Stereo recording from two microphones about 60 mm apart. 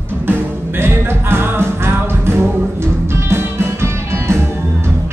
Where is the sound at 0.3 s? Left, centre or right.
Right.